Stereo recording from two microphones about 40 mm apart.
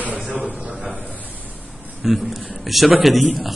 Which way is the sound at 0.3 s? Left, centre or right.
Right.